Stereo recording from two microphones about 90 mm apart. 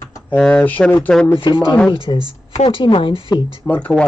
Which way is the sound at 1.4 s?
65° left (ahead or behind).